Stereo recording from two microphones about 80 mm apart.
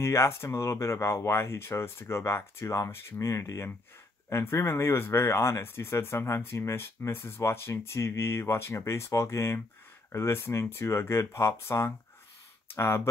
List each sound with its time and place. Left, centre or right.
0.0 s speech: left